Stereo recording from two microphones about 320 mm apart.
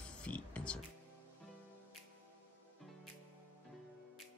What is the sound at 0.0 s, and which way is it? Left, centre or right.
Music, centre.